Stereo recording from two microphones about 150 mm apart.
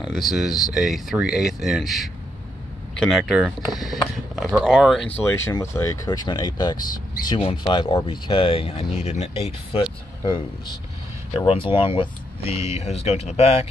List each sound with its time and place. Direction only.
0.1 s speech: centre (ahead or behind)
5.2 s speech: 15° left (ahead or behind); by 13.7 s 40° left (ahead or behind)